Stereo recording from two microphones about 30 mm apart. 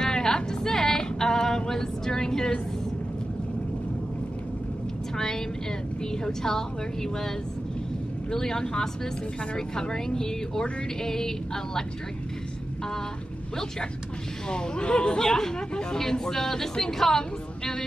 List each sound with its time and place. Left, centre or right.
0.1 s music: centre
1.0 s a sound: centre
5.1 s a sound: centre
6.2 s a woman's voice: centre
8.3 s speech: centre
14.5 s a woman's voice: left; by 17.2 s centre